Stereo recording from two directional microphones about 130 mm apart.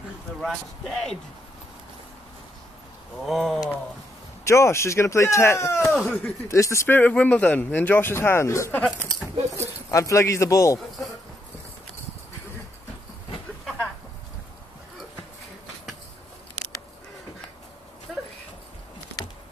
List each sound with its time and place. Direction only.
0.4 s speech: centre (ahead or behind)
3.2 s speech: centre (ahead or behind)
4.5 s speech: 20° left (ahead or behind)
5.8 s speech: centre (ahead or behind)
6.5 s speech: 20° left (ahead or behind)
9.0 s speech: 20° right (ahead or behind)
9.8 s speech: 25° left (ahead or behind)
18.1 s dog: 5° right (ahead or behind)